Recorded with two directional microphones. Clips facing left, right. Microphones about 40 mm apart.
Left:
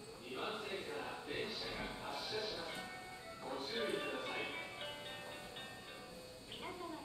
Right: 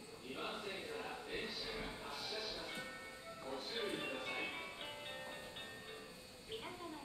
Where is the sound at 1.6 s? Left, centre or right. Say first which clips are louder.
Left 1 dB; centre.